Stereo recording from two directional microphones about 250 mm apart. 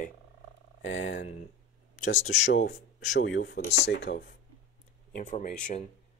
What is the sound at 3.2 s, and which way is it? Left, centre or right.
Speech, left.